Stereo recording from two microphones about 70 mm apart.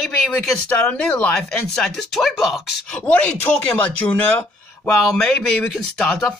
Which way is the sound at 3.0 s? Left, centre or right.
Left.